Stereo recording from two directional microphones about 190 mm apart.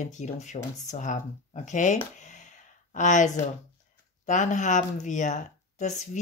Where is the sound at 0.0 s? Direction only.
40° left (ahead or behind).